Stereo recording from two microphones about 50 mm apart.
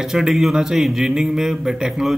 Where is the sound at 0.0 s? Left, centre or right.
Centre.